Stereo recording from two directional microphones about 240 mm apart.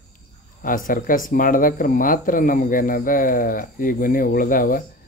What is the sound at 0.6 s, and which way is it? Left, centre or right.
Speech, left.